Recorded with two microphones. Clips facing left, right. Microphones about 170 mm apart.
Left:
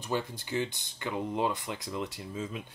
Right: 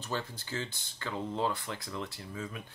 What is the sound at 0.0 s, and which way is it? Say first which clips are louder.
Speech: left 4 dB; 15° left (ahead or behind).